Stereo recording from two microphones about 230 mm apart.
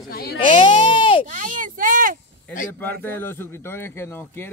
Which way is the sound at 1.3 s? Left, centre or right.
Right.